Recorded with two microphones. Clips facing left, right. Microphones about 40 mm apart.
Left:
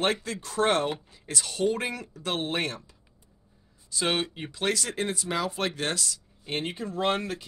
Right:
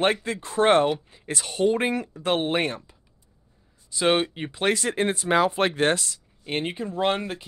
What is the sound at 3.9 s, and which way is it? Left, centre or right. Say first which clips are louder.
Speech: right 6 dB; centre.